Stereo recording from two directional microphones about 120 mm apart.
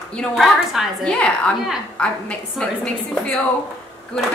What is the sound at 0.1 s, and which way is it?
Speech, 5° left (ahead or behind).